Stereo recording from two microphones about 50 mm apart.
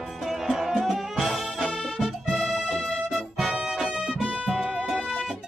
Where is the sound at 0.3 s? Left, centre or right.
Centre.